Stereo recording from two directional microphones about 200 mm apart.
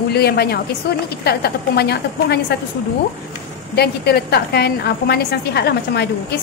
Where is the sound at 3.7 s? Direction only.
55° left (ahead or behind).